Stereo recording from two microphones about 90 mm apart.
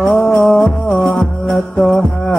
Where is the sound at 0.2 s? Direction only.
15° left (ahead or behind).